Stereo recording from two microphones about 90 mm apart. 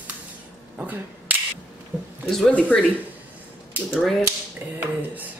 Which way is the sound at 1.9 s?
15° right (ahead or behind).